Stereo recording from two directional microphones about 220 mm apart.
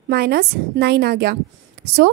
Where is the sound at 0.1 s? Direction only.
45° right (ahead or behind).